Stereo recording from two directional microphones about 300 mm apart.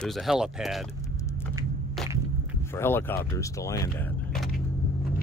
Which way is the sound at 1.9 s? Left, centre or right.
Centre.